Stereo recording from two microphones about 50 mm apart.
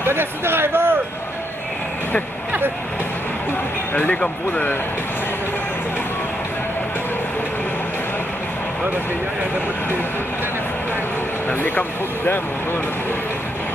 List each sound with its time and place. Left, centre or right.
0.0 s speech: right
3.9 s speech: left